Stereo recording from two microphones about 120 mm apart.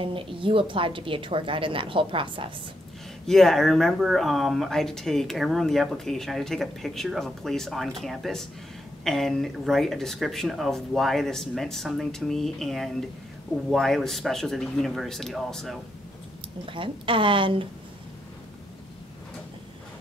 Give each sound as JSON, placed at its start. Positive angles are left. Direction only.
{"t": 0.0, "sound": "a woman's voice", "side_deg": -45}
{"t": 3.3, "sound": "speech", "side_deg": 0}
{"t": 16.6, "sound": "a woman's voice", "side_deg": -45}